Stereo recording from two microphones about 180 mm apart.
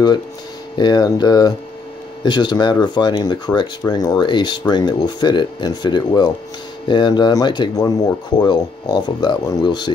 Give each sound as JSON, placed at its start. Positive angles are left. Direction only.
{"t": 0.7, "sound": "speech", "side_deg": 25}